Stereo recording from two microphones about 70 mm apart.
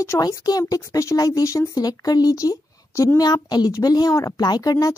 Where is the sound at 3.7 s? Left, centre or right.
Left.